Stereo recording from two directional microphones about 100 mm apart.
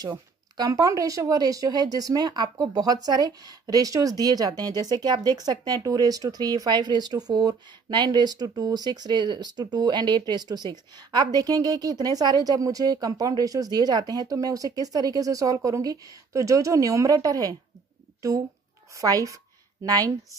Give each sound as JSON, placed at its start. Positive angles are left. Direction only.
{"t": 0.0, "sound": "speech", "side_deg": -40}
{"t": 18.9, "sound": "a woman's voice", "side_deg": -35}